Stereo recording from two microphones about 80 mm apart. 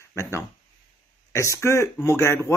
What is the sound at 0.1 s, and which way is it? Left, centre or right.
Speech, left.